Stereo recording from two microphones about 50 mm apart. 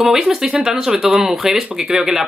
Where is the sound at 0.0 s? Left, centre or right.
Centre.